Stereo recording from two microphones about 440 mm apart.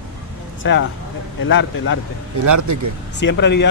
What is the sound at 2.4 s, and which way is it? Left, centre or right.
Speech, right.